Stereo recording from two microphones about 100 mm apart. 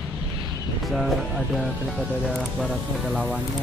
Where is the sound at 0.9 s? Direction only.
Centre (ahead or behind).